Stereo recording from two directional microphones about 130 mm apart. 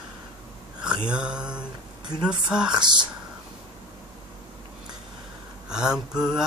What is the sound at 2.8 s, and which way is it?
Speech, 35° right (ahead or behind).